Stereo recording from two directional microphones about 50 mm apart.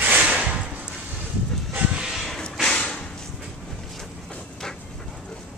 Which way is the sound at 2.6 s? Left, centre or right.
Centre.